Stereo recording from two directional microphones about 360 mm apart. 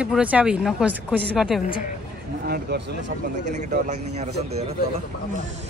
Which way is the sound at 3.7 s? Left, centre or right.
Centre.